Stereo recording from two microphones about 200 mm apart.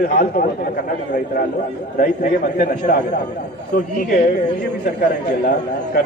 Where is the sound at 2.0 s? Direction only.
45° left (ahead or behind).